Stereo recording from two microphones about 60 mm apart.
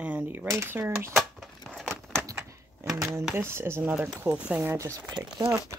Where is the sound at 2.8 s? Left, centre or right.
Right.